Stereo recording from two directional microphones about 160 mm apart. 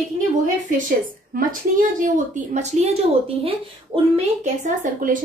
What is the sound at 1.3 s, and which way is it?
A woman's voice, 60° right (ahead or behind).